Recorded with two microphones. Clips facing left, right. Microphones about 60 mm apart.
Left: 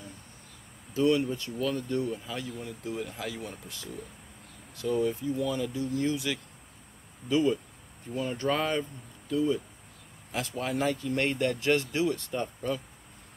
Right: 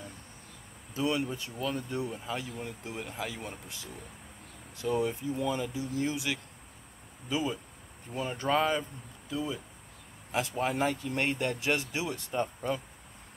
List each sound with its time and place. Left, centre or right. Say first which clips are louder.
0.9 s speech: left 5 dB; centre
8.5 s speech: right 2 dB; centre
10.3 s speech: right 1 dB; right